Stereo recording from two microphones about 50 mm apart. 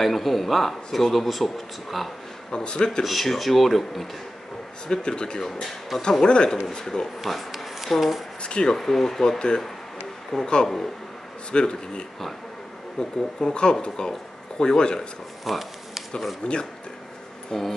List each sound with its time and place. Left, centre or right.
0.0 s speech: centre
2.5 s speech: centre
3.0 s speech: centre
4.8 s speech: centre
5.4 s speech: centre
6.2 s speech: centre
7.2 s speech: centre
8.4 s speech: centre
8.7 s speech: centre
15.4 s a sound: centre
16.4 s speech: left
17.5 s speech: centre